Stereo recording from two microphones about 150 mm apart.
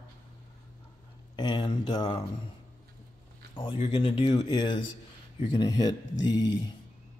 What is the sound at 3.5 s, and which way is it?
Speech, 35° left (ahead or behind).